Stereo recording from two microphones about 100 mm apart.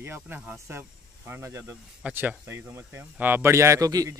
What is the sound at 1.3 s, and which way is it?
Speech, 30° right (ahead or behind).